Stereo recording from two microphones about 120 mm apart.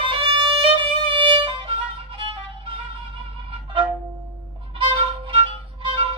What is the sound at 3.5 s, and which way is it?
Music, 45° right (ahead or behind).